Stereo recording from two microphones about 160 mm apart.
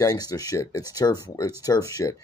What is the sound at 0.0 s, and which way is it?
Speech, 25° left (ahead or behind).